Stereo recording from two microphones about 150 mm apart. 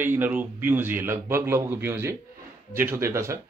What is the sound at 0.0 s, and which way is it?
A man's voice, 15° right (ahead or behind).